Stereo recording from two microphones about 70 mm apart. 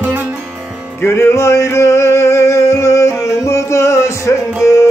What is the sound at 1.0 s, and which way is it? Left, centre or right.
Music, left.